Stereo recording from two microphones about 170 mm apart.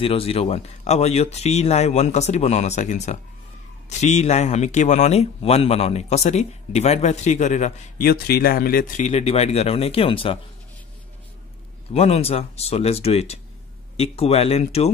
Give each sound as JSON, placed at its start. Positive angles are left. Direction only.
{"t": 0.0, "sound": "speech", "side_deg": 35}
{"t": 8.0, "sound": "speech", "side_deg": 65}
{"t": 11.9, "sound": "speech", "side_deg": 40}